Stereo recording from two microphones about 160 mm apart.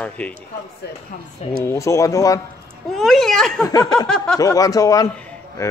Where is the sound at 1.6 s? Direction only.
20° left (ahead or behind).